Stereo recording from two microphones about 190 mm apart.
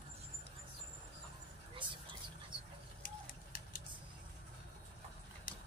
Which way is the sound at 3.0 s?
45° left (ahead or behind).